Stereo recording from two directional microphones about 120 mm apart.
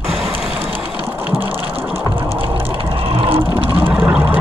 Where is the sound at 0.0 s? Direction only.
Centre (ahead or behind).